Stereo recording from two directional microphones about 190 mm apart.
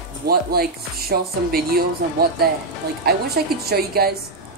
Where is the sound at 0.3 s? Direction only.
55° right (ahead or behind).